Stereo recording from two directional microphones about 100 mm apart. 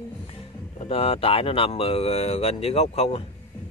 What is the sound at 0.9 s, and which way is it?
Speech, 75° left (ahead or behind).